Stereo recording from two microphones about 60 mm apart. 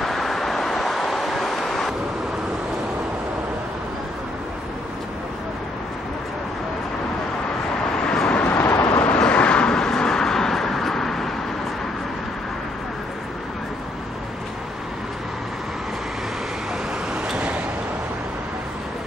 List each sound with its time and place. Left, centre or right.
0.0 s vehicle: centre
8.0 s vehicle: centre
8.5 s vehicle: left
8.8 s vehicle: left; by 11.2 s centre
17.1 s a sound: centre